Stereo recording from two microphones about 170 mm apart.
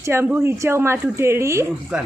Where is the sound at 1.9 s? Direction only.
5° right (ahead or behind).